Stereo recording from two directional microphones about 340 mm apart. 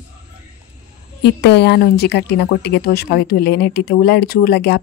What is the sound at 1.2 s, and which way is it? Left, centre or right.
Speech, left.